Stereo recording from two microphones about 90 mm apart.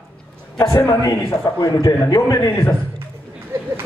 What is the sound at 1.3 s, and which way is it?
A man's voice, 40° left (ahead or behind).